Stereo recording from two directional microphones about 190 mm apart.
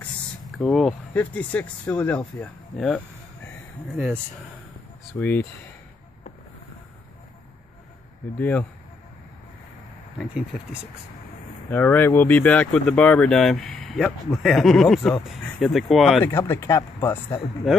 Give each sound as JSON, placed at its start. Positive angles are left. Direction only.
{"t": 0.6, "sound": "speech", "side_deg": 0}
{"t": 5.2, "sound": "speech", "side_deg": 10}
{"t": 8.4, "sound": "speech", "side_deg": 10}
{"t": 10.1, "sound": "speech", "side_deg": -5}
{"t": 11.7, "sound": "speech", "side_deg": 10}
{"t": 16.3, "sound": "speech", "side_deg": 10}
{"t": 17.7, "sound": "speech", "side_deg": 0}